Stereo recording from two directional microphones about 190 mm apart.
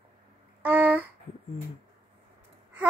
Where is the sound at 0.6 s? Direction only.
10° right (ahead or behind).